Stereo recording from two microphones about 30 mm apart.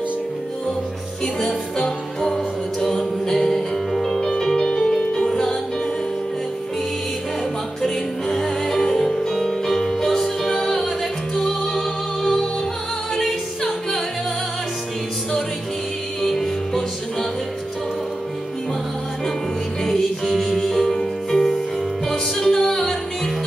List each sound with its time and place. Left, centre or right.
1.2 s music: centre
7.8 s music: centre
10.5 s music: left
12.2 s music: centre
16.2 s music: centre
20.2 s music: centre